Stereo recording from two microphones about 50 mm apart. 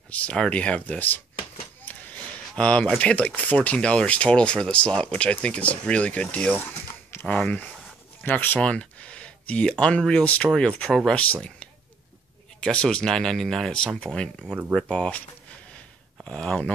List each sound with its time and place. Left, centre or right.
0.1 s speech: left
0.9 s speech: left
1.9 s a sound: left
2.5 s speech: left
8.2 s speech: left
8.5 s speech: left
12.5 s speech: centre
16.3 s speech: left